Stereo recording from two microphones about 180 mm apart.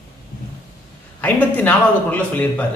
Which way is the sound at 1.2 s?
10° left (ahead or behind).